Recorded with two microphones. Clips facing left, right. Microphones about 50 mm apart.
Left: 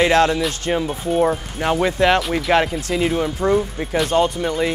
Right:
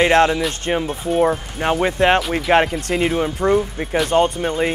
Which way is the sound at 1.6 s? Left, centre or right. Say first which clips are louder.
Even; right.